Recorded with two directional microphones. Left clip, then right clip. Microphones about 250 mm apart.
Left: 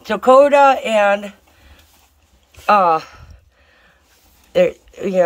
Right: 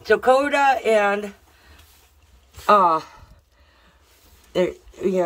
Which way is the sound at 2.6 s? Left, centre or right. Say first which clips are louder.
Left 3 dB; centre.